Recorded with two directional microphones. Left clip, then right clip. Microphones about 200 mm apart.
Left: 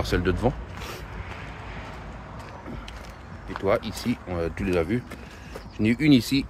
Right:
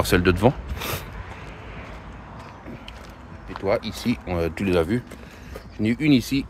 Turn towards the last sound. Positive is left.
turn(degrees=-5)  # may be behind; listen again after turning